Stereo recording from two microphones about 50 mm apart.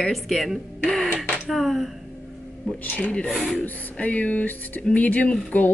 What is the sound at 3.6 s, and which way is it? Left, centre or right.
Speech, left.